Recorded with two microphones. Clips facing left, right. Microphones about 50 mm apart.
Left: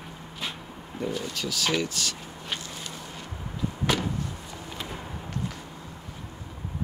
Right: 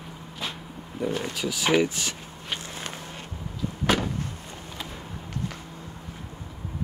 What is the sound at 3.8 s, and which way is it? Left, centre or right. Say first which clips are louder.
Vehicle: right 3 dB; right.